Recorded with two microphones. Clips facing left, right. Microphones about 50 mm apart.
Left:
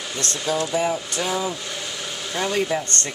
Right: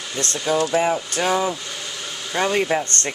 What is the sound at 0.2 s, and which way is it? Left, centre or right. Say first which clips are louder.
Speech: right 4 dB; right.